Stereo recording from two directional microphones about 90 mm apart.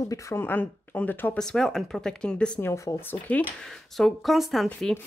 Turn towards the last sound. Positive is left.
turn(degrees=0)  # may be behind; listen again after turning